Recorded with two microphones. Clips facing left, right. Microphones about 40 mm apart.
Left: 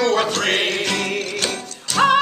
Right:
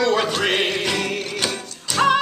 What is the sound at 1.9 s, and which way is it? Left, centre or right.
Music, centre.